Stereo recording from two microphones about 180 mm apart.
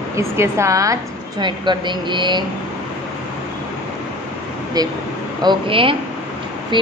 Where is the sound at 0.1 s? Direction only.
15° right (ahead or behind).